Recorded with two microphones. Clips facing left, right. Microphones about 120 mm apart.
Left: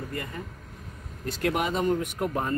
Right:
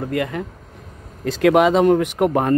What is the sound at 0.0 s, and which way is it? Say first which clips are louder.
Speech: right 12 dB; 90° right.